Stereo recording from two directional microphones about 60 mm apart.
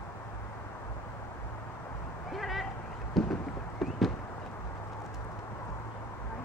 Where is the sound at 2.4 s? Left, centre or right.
Centre.